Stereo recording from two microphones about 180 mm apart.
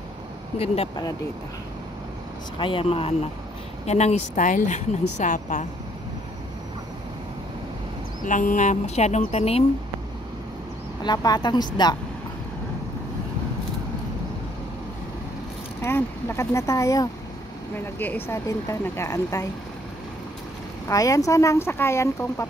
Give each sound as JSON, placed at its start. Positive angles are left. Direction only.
{"t": 2.6, "sound": "speech", "side_deg": 30}
{"t": 8.2, "sound": "speech", "side_deg": 45}
{"t": 11.1, "sound": "a woman's voice", "side_deg": 25}
{"t": 15.8, "sound": "speech", "side_deg": 15}
{"t": 20.9, "sound": "speech", "side_deg": 20}